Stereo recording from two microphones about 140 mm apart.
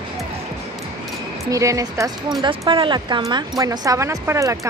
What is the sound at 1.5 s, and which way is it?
Speech, 25° right (ahead or behind).